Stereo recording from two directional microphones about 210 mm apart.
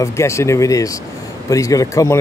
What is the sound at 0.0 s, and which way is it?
A man's voice, 15° left (ahead or behind).